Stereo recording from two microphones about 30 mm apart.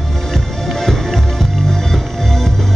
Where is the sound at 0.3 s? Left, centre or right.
Centre.